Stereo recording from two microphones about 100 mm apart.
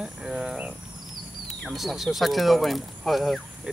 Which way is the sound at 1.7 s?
Centre (ahead or behind).